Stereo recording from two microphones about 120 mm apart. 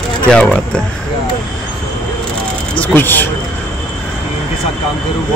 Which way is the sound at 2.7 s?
15° left (ahead or behind).